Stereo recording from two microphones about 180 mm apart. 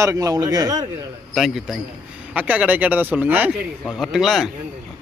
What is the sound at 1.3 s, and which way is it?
A man's voice, centre (ahead or behind).